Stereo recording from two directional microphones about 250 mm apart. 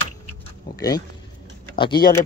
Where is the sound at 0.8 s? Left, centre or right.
Centre.